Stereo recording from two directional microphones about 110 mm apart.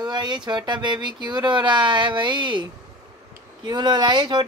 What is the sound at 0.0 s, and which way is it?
Child singing, 40° right (ahead or behind).